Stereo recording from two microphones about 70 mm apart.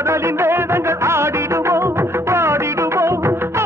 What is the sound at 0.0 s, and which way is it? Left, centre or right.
Music of bollywood, right.